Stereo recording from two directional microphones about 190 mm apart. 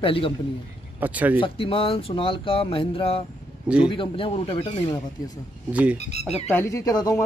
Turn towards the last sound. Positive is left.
turn(degrees=20)  # may be behind; listen again after turning